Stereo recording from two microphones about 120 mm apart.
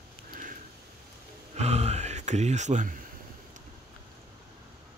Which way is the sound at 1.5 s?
65° right (ahead or behind).